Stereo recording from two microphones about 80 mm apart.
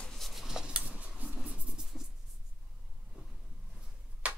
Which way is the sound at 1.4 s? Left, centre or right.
Centre.